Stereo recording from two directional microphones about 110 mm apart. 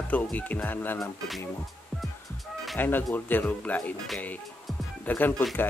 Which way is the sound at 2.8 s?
15° left (ahead or behind).